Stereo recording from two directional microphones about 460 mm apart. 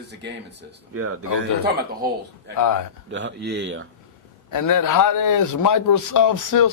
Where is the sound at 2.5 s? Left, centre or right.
Left.